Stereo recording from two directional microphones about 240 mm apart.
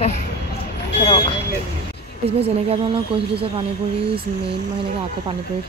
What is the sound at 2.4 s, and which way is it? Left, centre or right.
Speech, right.